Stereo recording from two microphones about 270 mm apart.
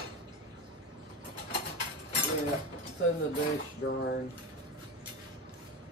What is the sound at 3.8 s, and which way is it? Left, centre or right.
Speech, left.